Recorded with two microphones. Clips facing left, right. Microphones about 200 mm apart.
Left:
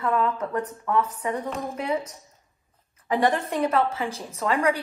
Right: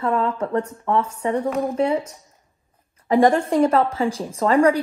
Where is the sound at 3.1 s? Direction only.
30° right (ahead or behind).